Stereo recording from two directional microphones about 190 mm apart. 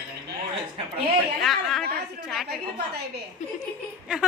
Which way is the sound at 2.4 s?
55° right (ahead or behind).